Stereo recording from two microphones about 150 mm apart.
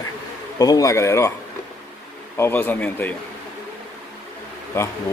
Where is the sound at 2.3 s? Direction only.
15° left (ahead or behind).